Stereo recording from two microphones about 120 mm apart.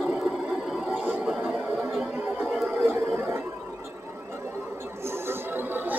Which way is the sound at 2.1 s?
15° right (ahead or behind).